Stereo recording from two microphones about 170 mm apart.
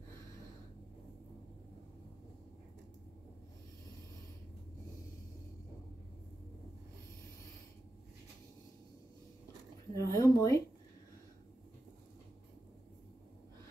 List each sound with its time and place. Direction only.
9.9 s speech: 20° left (ahead or behind)